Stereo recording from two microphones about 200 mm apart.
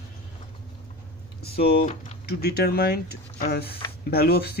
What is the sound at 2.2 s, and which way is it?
Speech, 55° left (ahead or behind).